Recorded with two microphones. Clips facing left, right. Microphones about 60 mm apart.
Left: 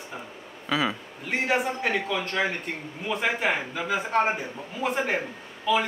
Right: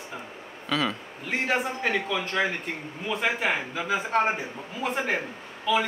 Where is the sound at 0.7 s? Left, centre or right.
Centre.